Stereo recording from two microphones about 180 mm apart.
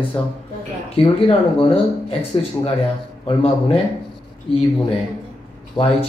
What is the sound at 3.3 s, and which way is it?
Speech, 30° left (ahead or behind).